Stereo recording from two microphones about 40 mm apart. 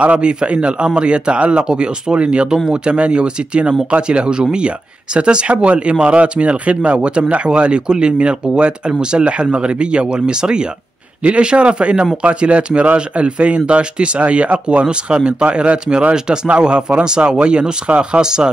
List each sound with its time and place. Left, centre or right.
0.0 s a man's voice: right
2.4 s speech: centre
2.7 s speech: right